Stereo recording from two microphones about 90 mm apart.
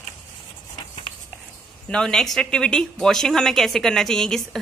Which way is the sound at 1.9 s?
5° left (ahead or behind).